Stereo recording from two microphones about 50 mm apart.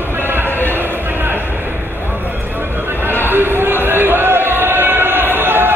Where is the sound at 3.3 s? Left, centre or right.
Right.